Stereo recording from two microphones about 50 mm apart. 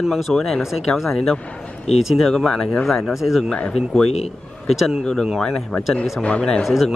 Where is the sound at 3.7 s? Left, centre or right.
Centre.